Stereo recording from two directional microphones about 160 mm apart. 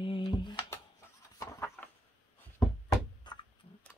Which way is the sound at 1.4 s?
20° left (ahead or behind).